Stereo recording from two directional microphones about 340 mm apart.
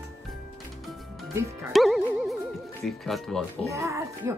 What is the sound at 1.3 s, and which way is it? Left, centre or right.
Speech, centre.